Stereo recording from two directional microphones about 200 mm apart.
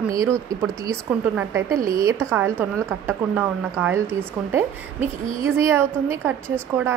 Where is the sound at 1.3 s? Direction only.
15° right (ahead or behind).